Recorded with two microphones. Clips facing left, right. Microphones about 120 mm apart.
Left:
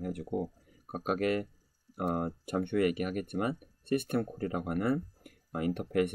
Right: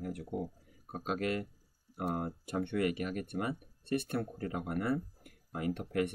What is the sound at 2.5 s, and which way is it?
Speech, 50° left (ahead or behind).